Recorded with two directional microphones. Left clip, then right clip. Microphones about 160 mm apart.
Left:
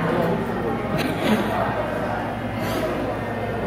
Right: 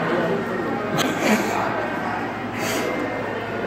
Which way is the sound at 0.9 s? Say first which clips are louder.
Right 4 dB; 20° right (ahead or behind).